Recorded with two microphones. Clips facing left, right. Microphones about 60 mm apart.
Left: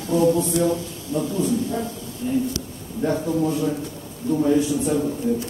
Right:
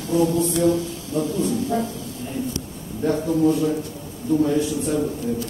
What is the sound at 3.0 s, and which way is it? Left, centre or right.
A man's voice, centre.